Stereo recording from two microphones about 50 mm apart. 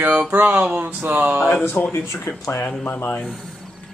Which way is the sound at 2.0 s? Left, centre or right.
Left.